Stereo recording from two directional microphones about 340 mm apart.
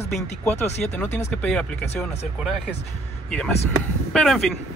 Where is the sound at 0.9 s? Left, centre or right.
Centre.